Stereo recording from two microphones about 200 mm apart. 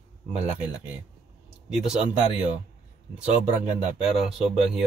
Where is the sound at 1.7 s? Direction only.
5° right (ahead or behind).